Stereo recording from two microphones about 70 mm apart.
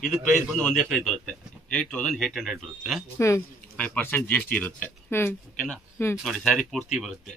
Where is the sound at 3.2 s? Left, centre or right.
Left.